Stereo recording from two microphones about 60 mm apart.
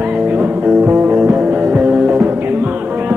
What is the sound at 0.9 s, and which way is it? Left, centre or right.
Music, right.